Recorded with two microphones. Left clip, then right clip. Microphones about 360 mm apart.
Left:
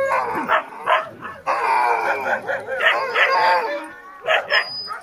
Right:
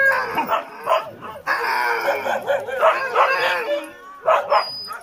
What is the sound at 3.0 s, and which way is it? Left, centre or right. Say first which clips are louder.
Dog: left 1 dB; centre.